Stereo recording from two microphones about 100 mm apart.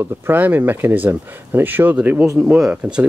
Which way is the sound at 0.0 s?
20° right (ahead or behind).